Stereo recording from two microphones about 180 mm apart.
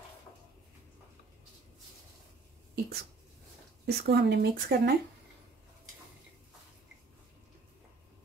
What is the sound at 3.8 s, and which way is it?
Speech, 65° right (ahead or behind).